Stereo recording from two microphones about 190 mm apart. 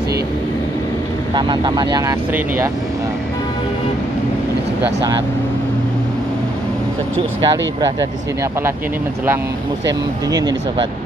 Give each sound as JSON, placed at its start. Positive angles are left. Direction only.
{"t": 1.3, "sound": "speech", "side_deg": -25}
{"t": 7.4, "sound": "speech", "side_deg": -20}
{"t": 9.8, "sound": "speech", "side_deg": -20}